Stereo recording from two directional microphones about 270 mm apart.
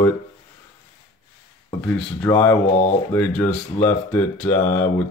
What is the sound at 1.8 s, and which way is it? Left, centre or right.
Speech, centre.